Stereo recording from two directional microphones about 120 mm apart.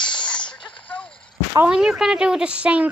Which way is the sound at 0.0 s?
40° left (ahead or behind).